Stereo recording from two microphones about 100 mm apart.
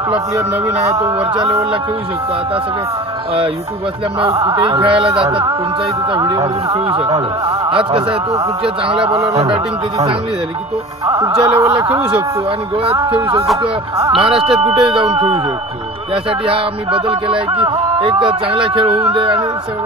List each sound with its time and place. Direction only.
0.9 s speech: 30° right (ahead or behind)
4.3 s speech: 35° right (ahead or behind)
4.6 s a man's voice: 55° right (ahead or behind)
6.1 s speech: 45° right (ahead or behind)
6.9 s a man's voice: 70° right (ahead or behind)
9.3 s a sound: 90° right
11.1 s speech: 35° right (ahead or behind)
11.3 s a man's voice: 65° right (ahead or behind)
11.6 s speech: 35° right (ahead or behind)
11.9 s a man's voice: 65° right (ahead or behind)
14.1 s a sound: 65° right (ahead or behind)
19.1 s a man's voice: 55° right (ahead or behind)